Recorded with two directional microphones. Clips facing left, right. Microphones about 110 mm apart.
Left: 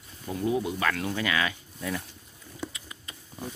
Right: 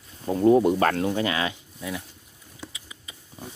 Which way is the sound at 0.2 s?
35° right (ahead or behind).